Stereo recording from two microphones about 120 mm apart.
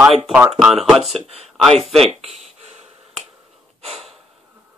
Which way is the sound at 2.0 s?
70° right (ahead or behind).